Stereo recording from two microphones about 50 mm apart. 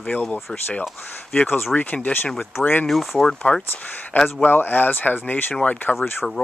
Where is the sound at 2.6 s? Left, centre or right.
Left.